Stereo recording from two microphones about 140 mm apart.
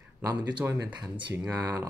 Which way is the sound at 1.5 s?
25° right (ahead or behind).